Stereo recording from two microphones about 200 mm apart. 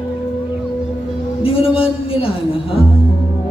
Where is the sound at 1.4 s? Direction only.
25° left (ahead or behind).